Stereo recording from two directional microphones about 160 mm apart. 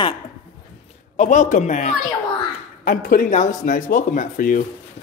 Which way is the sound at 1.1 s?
50° left (ahead or behind).